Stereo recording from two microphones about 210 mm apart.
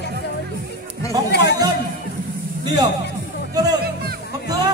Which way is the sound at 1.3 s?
55° left (ahead or behind).